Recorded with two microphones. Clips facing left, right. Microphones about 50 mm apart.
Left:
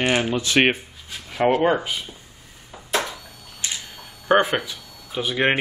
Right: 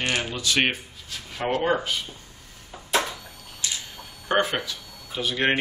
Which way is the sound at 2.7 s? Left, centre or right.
Centre.